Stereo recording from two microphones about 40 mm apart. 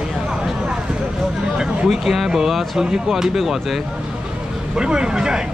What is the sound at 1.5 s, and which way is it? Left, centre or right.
Speech, centre.